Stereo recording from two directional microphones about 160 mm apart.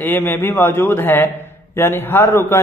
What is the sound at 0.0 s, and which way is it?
A man's voice, 15° left (ahead or behind).